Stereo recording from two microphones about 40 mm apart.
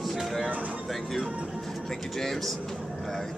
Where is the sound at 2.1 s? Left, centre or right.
Centre.